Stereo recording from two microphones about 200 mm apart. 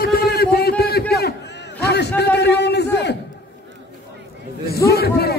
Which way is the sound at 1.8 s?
55° left (ahead or behind).